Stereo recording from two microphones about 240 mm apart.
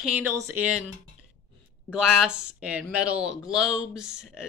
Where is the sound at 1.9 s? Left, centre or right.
Centre.